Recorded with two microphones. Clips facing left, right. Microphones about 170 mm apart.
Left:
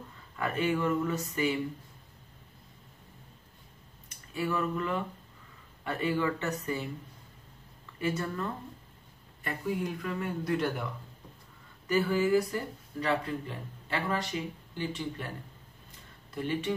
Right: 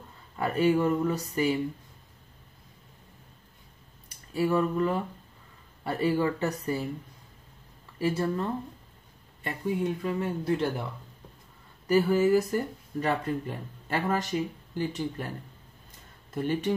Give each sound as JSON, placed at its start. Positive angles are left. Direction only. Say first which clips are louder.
{"t": 0.4, "sound": "speech", "louder": "right 5 dB", "side_deg": -35}
{"t": 4.3, "sound": "speech", "louder": "right 6 dB", "side_deg": -35}
{"t": 8.0, "sound": "speech", "louder": "right 5 dB", "side_deg": -30}
{"t": 11.9, "sound": "speech", "louder": "right 4 dB", "side_deg": -40}
{"t": 16.3, "sound": "speech", "louder": "right 4 dB", "side_deg": -40}